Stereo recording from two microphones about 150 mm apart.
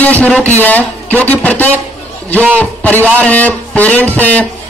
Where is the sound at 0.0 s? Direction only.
10° left (ahead or behind).